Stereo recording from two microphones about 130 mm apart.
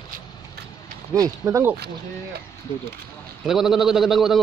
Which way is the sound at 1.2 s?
20° right (ahead or behind).